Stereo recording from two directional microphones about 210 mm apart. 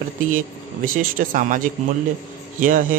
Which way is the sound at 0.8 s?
40° right (ahead or behind).